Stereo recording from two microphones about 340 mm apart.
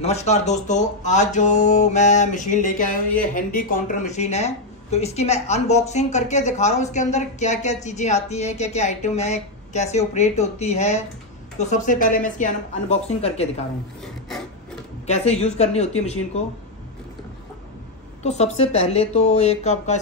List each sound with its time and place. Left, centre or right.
0.0 s a woman's voice: centre
15.0 s a woman's voice: centre
18.2 s a woman's voice: centre